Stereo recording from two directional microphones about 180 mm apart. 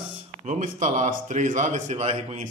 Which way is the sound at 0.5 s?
45° right (ahead or behind).